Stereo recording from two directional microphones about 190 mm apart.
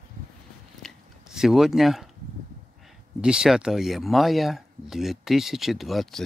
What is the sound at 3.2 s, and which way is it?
Speech, 5° right (ahead or behind).